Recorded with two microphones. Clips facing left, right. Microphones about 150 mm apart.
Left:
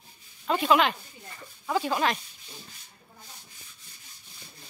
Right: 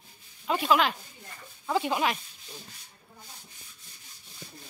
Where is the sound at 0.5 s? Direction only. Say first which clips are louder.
Left 2 dB; centre (ahead or behind).